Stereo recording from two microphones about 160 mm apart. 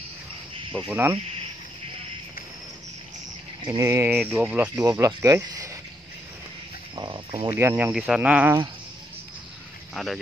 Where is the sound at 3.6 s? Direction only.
20° right (ahead or behind).